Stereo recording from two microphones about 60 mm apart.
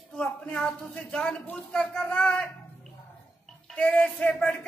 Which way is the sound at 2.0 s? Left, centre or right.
Left.